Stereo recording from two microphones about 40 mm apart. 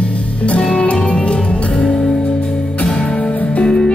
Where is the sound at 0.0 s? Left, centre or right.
Left.